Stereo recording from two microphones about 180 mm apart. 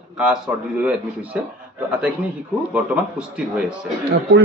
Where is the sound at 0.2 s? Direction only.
5° right (ahead or behind).